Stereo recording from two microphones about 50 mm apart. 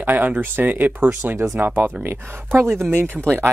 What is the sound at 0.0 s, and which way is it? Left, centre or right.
Speech, right.